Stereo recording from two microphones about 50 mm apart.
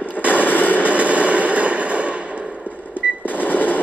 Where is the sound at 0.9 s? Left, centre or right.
Right.